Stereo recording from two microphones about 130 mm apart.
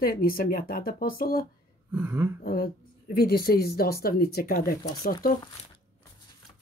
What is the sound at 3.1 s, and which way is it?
Speech, 90° left.